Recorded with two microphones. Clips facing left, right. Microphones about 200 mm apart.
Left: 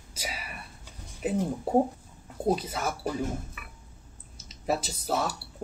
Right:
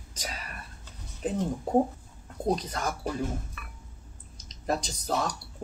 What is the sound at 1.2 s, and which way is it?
Speech, 10° left (ahead or behind).